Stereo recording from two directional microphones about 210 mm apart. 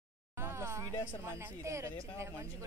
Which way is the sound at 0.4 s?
10° right (ahead or behind).